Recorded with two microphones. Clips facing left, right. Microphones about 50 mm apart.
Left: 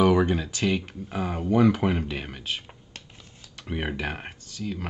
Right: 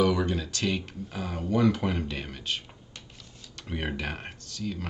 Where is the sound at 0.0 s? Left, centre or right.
Left.